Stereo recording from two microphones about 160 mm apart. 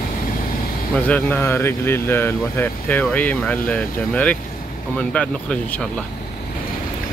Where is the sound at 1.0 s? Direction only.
10° left (ahead or behind).